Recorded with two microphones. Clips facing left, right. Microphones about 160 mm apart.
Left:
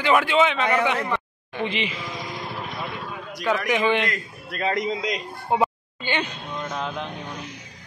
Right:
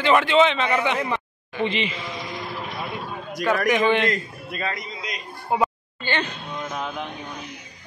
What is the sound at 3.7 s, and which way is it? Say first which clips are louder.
Speech: right 1 dB; 10° left (ahead or behind).